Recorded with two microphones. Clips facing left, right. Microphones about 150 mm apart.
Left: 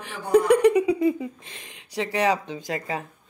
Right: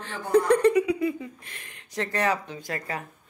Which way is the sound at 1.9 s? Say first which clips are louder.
Left 3 dB; 15° left (ahead or behind).